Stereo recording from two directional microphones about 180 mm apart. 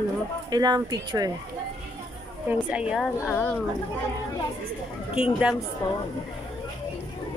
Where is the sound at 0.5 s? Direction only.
25° right (ahead or behind).